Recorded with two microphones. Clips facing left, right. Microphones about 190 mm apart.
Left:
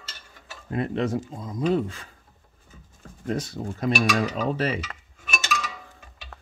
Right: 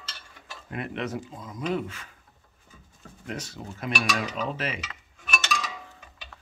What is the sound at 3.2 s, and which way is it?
Dishes, 40° left (ahead or behind).